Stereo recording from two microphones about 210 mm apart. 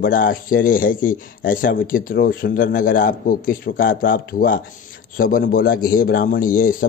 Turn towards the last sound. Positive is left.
turn(degrees=40)  # may be behind; listen again after turning